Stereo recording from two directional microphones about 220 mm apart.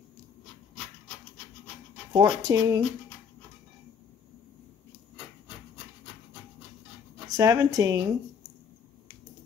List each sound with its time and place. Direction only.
2.1 s speech: 15° right (ahead or behind)
7.2 s speech: 15° right (ahead or behind)